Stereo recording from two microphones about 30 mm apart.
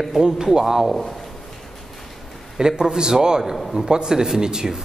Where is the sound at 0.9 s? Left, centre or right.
Centre.